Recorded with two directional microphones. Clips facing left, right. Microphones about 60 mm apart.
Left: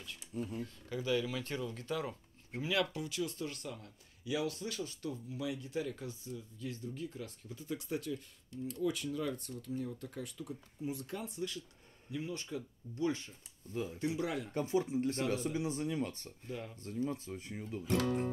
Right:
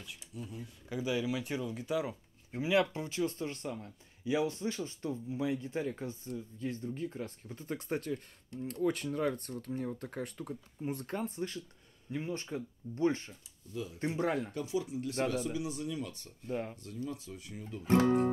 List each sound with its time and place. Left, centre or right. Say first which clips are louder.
0.3 s speech: left 5 dB; left
0.8 s speech: right 2 dB; centre
2.7 s speech: right 5 dB; right
13.7 s speech: left 1 dB; left
13.9 s speech: right 5 dB; right
14.5 s speech: left 2 dB; left
16.4 s speech: right 7 dB; right
16.7 s speech: left 3 dB; left
17.8 s speech: right 7 dB; right